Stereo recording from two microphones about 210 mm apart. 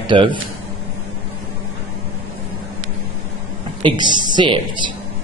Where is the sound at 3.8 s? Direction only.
20° right (ahead or behind).